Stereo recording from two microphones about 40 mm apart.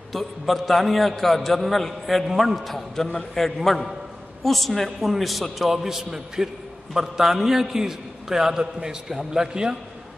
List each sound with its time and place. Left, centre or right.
0.1 s a man's voice: centre
3.5 s a man's voice: centre; by 9.8 s right